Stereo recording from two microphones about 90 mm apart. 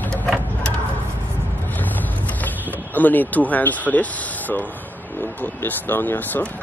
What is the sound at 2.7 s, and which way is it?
Speech, 20° left (ahead or behind).